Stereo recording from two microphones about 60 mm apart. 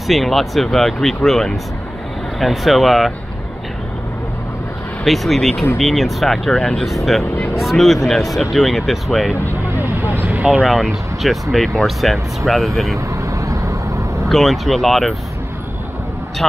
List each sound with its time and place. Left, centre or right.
0.1 s speech: centre
5.0 s speech: centre
10.1 s vehicle: right
10.7 s speech: centre
12.9 s vehicle: right
14.3 s speech: centre